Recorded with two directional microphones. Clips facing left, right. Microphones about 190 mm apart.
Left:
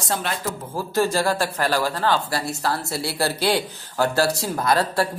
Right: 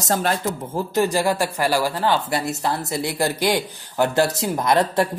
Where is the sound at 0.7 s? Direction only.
20° right (ahead or behind).